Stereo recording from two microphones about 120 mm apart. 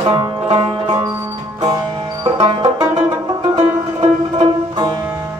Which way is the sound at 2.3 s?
40° right (ahead or behind).